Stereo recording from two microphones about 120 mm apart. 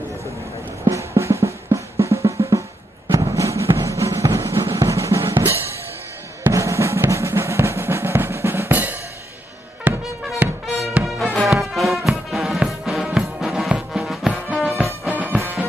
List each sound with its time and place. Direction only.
0.8 s drum: 25° right (ahead or behind)
3.2 s music: 25° right (ahead or behind)
6.4 s drum: 25° right (ahead or behind)
9.8 s music: 10° right (ahead or behind)